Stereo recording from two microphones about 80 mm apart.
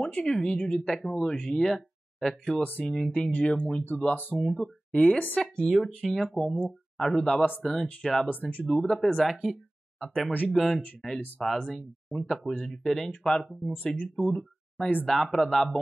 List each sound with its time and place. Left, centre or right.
0.0 s speech: centre
2.6 s speech: left
4.4 s speech: centre
8.3 s speech: centre
8.7 s speech: centre
11.1 s speech: left
11.4 s speech: centre
13.7 s speech: left
14.1 s speech: centre